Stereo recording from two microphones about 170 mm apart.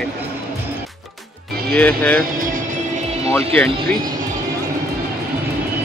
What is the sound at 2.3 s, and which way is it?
Music, 55° right (ahead or behind).